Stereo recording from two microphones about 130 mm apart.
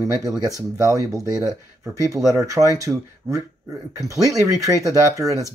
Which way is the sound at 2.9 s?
5° right (ahead or behind).